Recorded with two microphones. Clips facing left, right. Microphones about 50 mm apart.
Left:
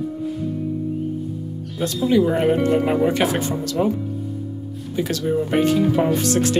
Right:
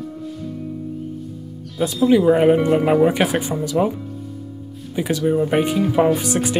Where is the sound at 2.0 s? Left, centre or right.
Centre.